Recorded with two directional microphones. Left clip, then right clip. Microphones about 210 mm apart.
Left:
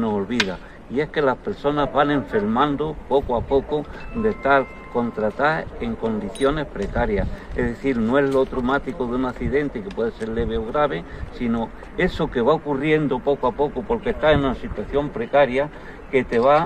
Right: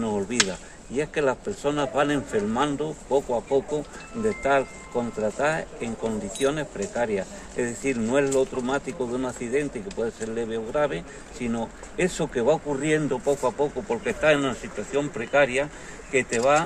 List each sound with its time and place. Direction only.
0.9 s speech: 20° right (ahead or behind)